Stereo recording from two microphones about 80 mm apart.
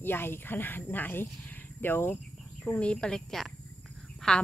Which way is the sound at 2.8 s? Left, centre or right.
Centre.